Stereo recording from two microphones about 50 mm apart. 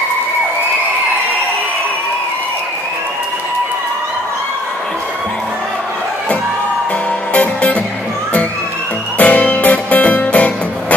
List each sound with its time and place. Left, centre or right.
7.3 s music: left
9.2 s music: left